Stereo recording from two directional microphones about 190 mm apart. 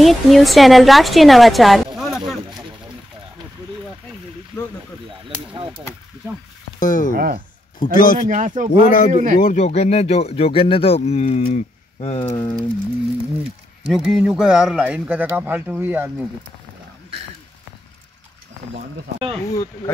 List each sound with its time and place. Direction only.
0.0 s a woman's voice: centre (ahead or behind)
2.0 s a sound: centre (ahead or behind)
5.5 s a sound: 25° right (ahead or behind)
6.8 s a man's voice: 40° left (ahead or behind)
7.2 s speech: 50° right (ahead or behind)
7.8 s a man's voice: 45° left (ahead or behind)
8.3 s speech: 40° right (ahead or behind)
8.7 s a man's voice: 45° left (ahead or behind)
9.1 s speech: 45° right (ahead or behind)
9.4 s speech: 40° left (ahead or behind)
12.4 s a sound: 25° left (ahead or behind)
13.9 s speech: centre (ahead or behind)
19.1 s speech: 30° right (ahead or behind)